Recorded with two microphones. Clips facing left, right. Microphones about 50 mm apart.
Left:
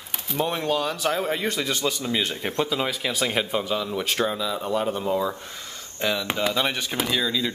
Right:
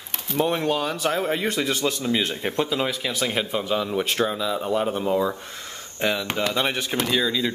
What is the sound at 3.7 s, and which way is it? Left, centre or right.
Speech, centre.